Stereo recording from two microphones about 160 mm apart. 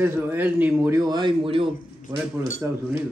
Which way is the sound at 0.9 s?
25° right (ahead or behind).